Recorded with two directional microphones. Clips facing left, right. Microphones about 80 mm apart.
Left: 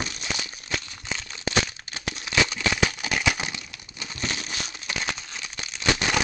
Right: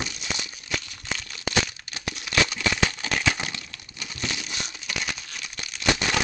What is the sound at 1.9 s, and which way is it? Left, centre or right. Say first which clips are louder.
Crumpling: even; left.